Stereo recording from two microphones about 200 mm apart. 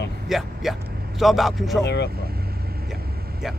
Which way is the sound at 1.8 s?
60° left (ahead or behind).